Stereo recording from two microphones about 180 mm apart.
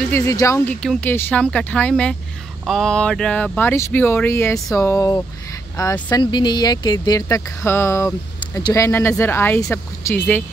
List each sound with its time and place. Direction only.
0.1 s speech: 15° left (ahead or behind)